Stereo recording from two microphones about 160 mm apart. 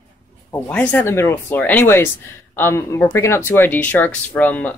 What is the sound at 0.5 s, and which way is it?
Speech, 15° left (ahead or behind).